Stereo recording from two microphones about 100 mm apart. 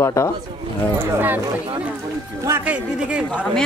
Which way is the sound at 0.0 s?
30° left (ahead or behind).